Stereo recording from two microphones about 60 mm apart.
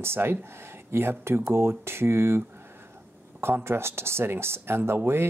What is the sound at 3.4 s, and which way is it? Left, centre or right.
Speech, right.